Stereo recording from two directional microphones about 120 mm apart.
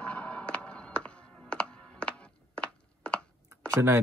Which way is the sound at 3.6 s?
25° right (ahead or behind).